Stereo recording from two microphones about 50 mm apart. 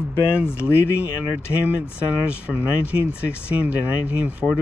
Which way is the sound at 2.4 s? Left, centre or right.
Right.